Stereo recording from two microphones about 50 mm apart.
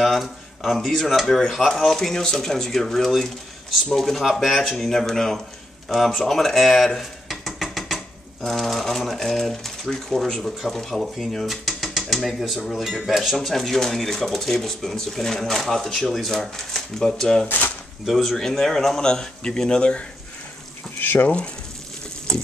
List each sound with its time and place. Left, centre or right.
0.0 s a sound: centre
0.7 s speech: centre
17.5 s speech: left
18.0 s speech: centre
21.0 s speech: left
22.3 s speech: centre